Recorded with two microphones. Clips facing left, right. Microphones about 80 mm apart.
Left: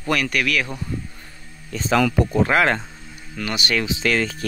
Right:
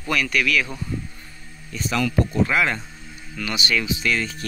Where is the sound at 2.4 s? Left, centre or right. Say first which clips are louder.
Left 4 dB; left.